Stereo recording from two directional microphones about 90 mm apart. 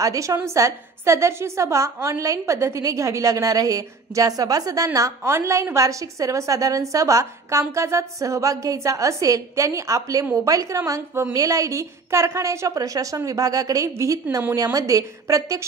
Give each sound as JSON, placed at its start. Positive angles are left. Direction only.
{"t": 0.0, "sound": "a woman's voice", "side_deg": -40}